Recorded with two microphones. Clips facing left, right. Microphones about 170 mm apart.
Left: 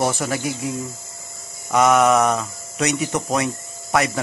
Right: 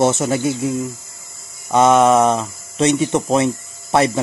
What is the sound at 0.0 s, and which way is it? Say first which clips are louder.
Speech: right 6 dB; 25° right (ahead or behind).